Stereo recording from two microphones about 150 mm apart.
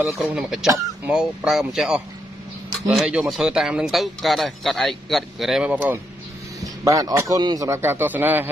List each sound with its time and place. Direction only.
0.0 s speech: 10° right (ahead or behind)
6.6 s a man's voice: 25° right (ahead or behind)